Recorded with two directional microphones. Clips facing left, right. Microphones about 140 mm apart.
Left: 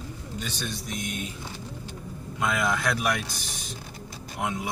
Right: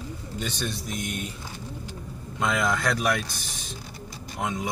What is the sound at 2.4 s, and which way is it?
Speech, 5° left (ahead or behind).